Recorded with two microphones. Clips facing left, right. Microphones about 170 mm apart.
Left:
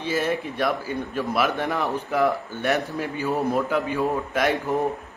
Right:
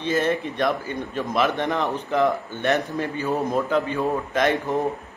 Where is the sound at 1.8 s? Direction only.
20° right (ahead or behind).